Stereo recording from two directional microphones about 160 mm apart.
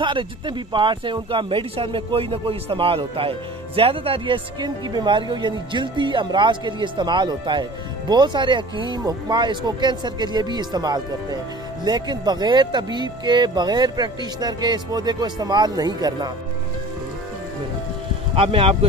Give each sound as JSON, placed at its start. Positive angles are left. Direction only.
{"t": 0.0, "sound": "speech", "side_deg": -30}
{"t": 18.3, "sound": "speech", "side_deg": -35}